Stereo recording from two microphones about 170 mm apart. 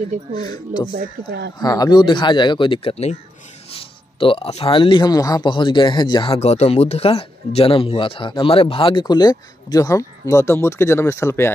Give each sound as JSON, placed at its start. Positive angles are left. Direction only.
{"t": 0.4, "sound": "speech", "side_deg": 25}
{"t": 6.4, "sound": "speech", "side_deg": 40}